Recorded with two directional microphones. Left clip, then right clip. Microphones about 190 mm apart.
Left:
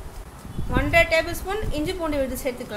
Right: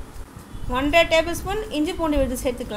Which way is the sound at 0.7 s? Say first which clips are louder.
Right 2 dB; 15° right (ahead or behind).